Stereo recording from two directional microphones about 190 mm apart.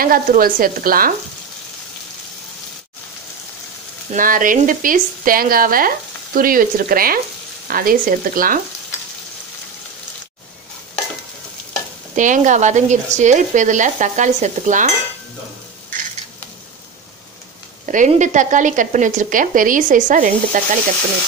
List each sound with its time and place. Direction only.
0.0 s speech: 50° right (ahead or behind)
4.1 s speech: 45° right (ahead or behind)
12.2 s speech: 40° right (ahead or behind)
17.8 s speech: 40° right (ahead or behind)